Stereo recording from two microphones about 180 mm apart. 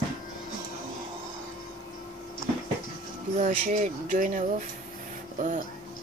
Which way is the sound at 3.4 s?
45° right (ahead or behind).